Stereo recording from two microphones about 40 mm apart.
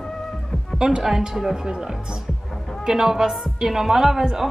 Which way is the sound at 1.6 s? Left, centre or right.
Centre.